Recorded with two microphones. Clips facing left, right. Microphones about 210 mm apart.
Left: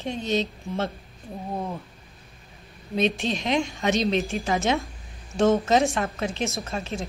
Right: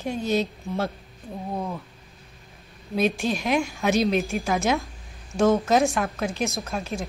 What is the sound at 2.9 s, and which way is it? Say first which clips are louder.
A woman's voice: right 1 dB; 5° right (ahead or behind).